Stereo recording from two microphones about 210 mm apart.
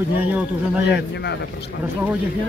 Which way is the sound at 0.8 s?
55° left (ahead or behind).